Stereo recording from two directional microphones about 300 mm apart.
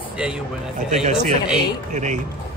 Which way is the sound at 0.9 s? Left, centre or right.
Right.